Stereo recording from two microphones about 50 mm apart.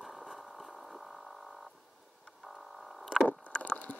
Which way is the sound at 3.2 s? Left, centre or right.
Left.